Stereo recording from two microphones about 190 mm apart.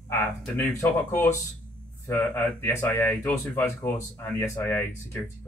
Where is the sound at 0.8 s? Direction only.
10° left (ahead or behind).